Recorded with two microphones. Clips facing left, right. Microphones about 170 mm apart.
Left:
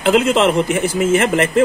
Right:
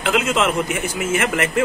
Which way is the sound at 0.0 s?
30° left (ahead or behind).